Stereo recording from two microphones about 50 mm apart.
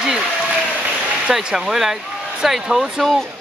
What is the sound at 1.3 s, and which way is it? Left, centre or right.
Speech, centre.